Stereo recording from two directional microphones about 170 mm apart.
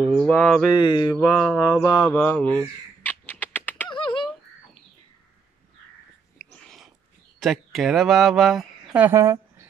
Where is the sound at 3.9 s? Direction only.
30° left (ahead or behind).